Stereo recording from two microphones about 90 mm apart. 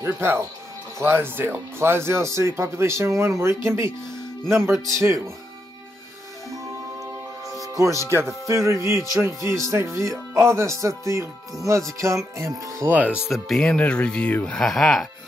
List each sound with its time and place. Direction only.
0.0 s speech: 25° right (ahead or behind)
6.5 s music: 40° right (ahead or behind)
9.1 s speech: 35° right (ahead or behind)
12.9 s speech: 15° right (ahead or behind)
13.3 s speech: 5° left (ahead or behind)